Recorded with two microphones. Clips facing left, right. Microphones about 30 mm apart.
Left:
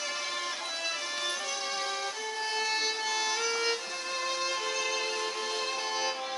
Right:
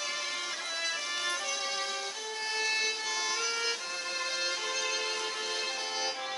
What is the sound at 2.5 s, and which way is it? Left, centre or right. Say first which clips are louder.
Violin: right 1 dB; centre.